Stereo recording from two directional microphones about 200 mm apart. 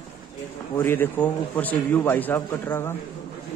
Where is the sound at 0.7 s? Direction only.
10° left (ahead or behind).